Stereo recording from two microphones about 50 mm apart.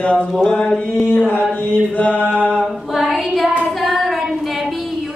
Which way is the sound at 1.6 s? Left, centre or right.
Left.